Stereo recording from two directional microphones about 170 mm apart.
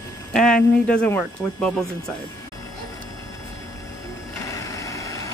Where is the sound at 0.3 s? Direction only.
5° left (ahead or behind).